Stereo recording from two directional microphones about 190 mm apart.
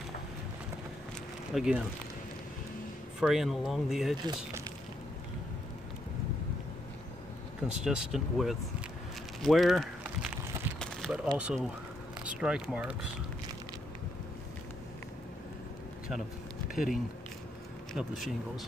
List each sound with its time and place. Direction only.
1.5 s speech: 5° right (ahead or behind)
3.2 s speech: centre (ahead or behind)
7.6 s speech: 5° right (ahead or behind)
9.4 s a sound: centre (ahead or behind)
11.3 s speech: 5° right (ahead or behind)
16.7 s speech: 45° left (ahead or behind)
17.9 s speech: centre (ahead or behind)